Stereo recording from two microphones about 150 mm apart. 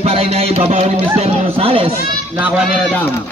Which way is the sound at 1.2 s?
40° right (ahead or behind).